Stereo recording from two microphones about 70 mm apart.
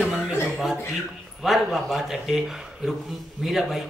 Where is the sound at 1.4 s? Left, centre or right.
Centre.